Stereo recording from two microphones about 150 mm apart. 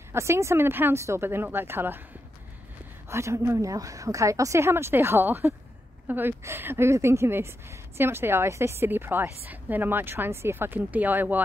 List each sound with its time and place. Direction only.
0.1 s a woman's voice: 20° right (ahead or behind)
3.1 s a woman's voice: 20° right (ahead or behind)